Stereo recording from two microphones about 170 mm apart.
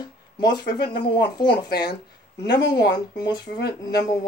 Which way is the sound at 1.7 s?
80° left.